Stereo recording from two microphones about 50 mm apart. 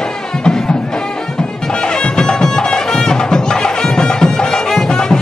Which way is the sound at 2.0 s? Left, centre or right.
Centre.